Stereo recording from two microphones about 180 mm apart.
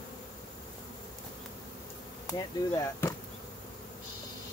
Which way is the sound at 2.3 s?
20° left (ahead or behind).